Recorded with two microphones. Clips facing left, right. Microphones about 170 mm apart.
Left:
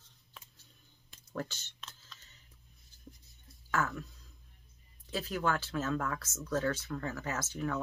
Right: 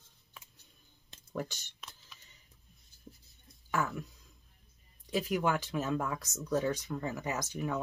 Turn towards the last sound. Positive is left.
turn(degrees=-15)  # may be behind; listen again after turning